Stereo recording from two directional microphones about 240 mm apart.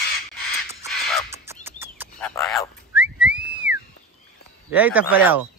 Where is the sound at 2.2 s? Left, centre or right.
Centre.